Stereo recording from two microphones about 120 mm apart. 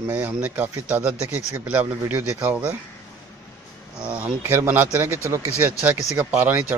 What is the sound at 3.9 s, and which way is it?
Speech, 10° right (ahead or behind).